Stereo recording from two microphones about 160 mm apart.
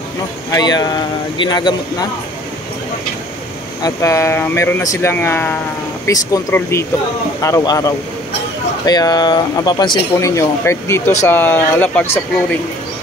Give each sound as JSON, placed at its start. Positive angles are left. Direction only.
{"t": 0.5, "sound": "speech", "side_deg": 25}
{"t": 3.8, "sound": "speech", "side_deg": 20}